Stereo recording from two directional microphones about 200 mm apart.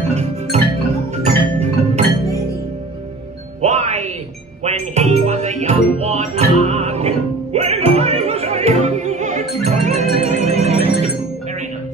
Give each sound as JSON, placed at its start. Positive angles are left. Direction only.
{"t": 0.1, "sound": "music", "side_deg": -35}
{"t": 3.6, "sound": "music", "side_deg": -35}